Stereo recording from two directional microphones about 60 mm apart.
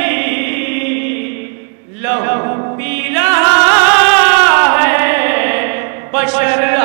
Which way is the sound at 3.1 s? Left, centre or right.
Right.